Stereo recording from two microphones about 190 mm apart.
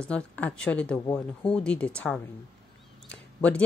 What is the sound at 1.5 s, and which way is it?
Speech, 5° left (ahead or behind).